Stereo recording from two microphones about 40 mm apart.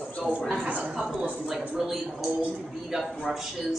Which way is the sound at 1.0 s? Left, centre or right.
Centre.